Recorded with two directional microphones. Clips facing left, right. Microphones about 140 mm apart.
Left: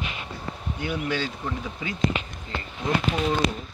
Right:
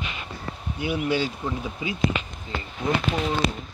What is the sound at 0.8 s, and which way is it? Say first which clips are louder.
Speech: right 4 dB; 10° right (ahead or behind).